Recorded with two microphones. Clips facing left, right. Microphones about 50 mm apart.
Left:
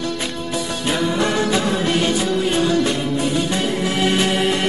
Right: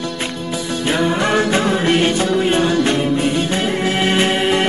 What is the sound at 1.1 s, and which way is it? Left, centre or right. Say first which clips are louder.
Music: right 2 dB; right.